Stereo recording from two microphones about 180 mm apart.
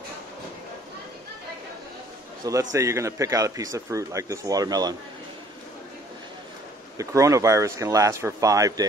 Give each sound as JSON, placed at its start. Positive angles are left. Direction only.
{"t": 2.7, "sound": "speech", "side_deg": -15}
{"t": 7.0, "sound": "speech", "side_deg": -15}